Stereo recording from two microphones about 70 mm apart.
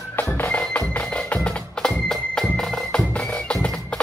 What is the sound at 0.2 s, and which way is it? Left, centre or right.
Music, left.